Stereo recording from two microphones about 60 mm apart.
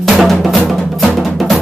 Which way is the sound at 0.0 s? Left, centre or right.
Centre.